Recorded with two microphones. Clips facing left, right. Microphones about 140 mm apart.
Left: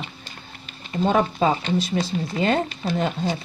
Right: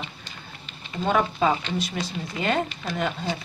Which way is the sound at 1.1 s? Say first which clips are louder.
Left 2 dB; 30° left (ahead or behind).